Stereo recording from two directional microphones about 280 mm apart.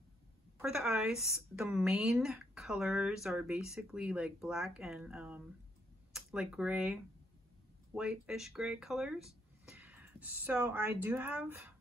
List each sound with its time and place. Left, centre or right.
0.6 s a woman's voice: centre